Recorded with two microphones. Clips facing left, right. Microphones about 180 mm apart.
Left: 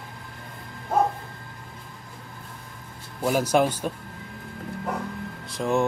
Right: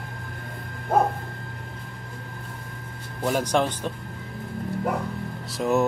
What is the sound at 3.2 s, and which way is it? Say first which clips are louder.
Speech: left 2 dB; 5° left (ahead or behind).